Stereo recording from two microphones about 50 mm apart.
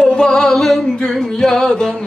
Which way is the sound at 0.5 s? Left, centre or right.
Centre.